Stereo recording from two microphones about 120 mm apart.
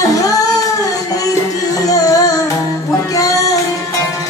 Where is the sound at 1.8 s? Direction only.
30° left (ahead or behind).